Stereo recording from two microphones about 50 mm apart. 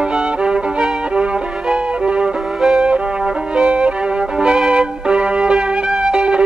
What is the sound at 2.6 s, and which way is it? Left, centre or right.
Music, centre.